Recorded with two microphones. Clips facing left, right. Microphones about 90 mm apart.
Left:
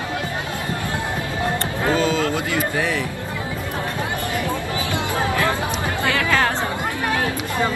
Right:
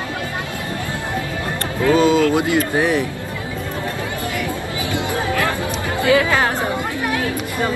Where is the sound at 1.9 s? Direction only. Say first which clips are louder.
Right 7 dB; 20° right (ahead or behind).